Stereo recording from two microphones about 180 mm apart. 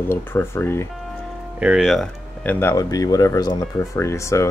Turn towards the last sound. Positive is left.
turn(degrees=15)  # may be behind; listen again after turning